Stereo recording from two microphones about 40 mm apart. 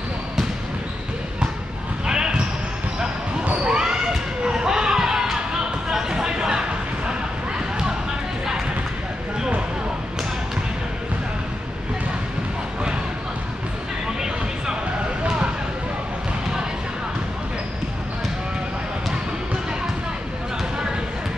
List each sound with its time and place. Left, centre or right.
2.0 s basketball bounce: centre
3.6 s basketball bounce: right